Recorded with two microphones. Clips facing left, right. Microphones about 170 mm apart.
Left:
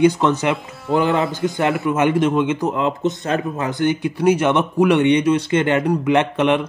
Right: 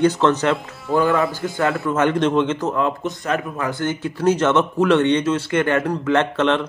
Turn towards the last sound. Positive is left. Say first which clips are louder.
# left 1 dB
turn(degrees=15)  # may be behind; listen again after turning